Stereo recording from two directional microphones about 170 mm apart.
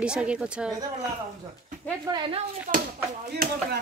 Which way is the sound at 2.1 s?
30° right (ahead or behind).